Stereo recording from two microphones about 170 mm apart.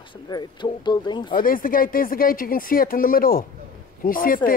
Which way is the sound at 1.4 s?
55° left (ahead or behind).